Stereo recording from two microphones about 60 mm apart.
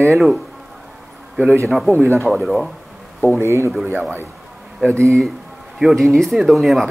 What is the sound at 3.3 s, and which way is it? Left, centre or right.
Speech, right.